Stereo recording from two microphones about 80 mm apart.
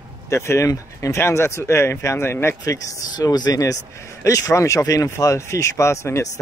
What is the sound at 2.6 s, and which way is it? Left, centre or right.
A man's voice, left.